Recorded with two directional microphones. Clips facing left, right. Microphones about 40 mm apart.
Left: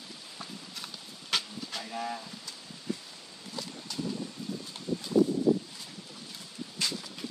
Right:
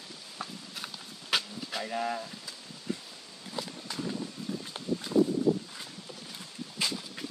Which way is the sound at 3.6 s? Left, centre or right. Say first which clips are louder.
Right 1 dB; centre.